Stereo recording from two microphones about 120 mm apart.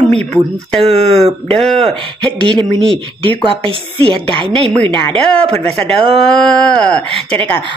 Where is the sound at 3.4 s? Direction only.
45° right (ahead or behind).